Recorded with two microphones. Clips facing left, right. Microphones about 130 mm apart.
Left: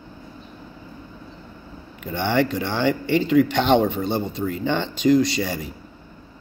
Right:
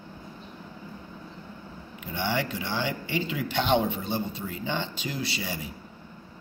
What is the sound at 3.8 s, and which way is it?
Speech, 70° left (ahead or behind).